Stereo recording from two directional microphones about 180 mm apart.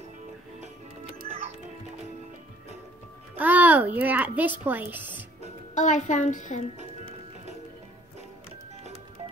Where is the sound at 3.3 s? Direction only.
10° right (ahead or behind).